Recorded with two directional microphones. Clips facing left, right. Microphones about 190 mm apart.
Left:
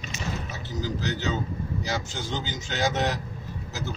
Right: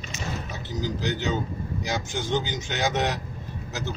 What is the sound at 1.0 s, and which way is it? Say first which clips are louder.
A man's voice: right 3 dB; 15° right (ahead or behind).